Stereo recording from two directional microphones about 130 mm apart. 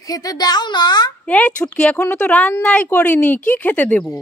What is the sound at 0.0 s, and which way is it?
A child's voice, 30° left (ahead or behind).